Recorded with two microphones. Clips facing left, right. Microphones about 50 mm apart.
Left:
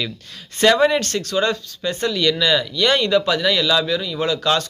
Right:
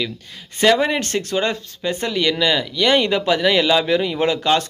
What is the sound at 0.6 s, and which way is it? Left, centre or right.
Speech, centre.